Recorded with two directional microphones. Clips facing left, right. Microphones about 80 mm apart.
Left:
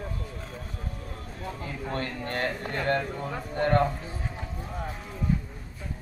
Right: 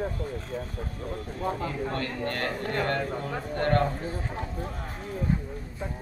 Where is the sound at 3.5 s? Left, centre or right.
Centre.